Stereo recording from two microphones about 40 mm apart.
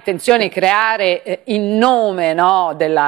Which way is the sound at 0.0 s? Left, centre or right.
Centre.